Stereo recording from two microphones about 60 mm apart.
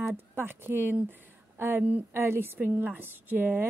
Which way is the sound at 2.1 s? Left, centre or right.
Right.